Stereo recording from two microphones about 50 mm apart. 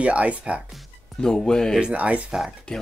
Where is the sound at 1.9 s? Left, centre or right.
Right.